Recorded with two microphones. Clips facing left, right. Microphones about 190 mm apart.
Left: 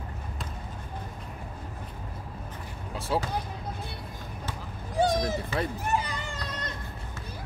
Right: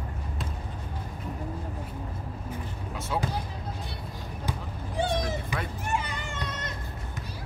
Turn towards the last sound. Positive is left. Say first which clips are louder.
# right 1 dB
turn(degrees=35)  # may be behind; listen again after turning